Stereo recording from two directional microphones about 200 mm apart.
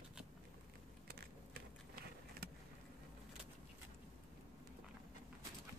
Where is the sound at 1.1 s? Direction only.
50° right (ahead or behind).